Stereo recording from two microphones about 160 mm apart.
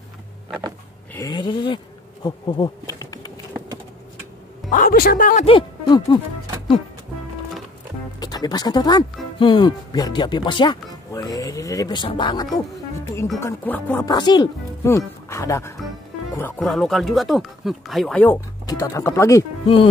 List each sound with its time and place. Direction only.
1.1 s a sound: 25° left (ahead or behind)
2.2 s bee: 30° left (ahead or behind)
4.6 s a woman's voice: 60° left (ahead or behind)
5.4 s speech: 30° left (ahead or behind)
8.2 s speech: 25° left (ahead or behind)
13.4 s speech: 15° left (ahead or behind)
14.0 s speech: 25° left (ahead or behind)
16.5 s speech: centre (ahead or behind)
18.7 s speech: 20° left (ahead or behind)